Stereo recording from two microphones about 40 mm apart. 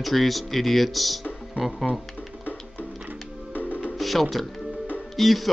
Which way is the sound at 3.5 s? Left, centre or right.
Left.